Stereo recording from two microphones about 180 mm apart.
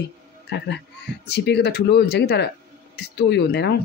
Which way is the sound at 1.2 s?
70° left (ahead or behind).